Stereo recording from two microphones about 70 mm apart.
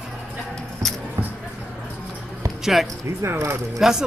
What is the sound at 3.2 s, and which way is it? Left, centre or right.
Speech, right.